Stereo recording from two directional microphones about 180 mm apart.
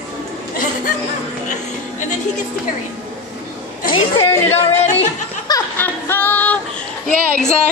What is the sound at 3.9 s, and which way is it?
Speech, 25° left (ahead or behind).